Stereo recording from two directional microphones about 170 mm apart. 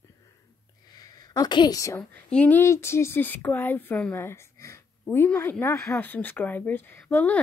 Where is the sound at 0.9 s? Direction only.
20° left (ahead or behind).